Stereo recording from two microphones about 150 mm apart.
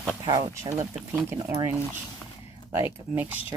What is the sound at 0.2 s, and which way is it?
Speech, 25° right (ahead or behind).